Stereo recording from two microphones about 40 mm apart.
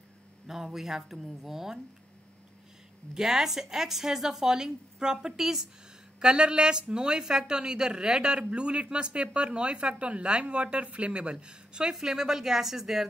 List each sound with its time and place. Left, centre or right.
0.5 s a woman's voice: centre
3.2 s a woman's voice: centre